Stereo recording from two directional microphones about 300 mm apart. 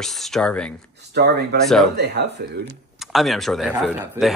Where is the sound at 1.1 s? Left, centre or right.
Right.